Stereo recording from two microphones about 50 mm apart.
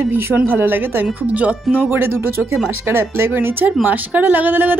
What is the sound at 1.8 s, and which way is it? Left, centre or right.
A man's voice, right.